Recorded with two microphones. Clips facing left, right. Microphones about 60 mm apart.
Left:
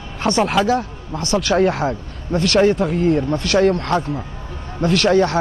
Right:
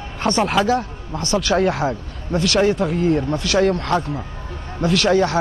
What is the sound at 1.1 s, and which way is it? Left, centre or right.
Speech, centre.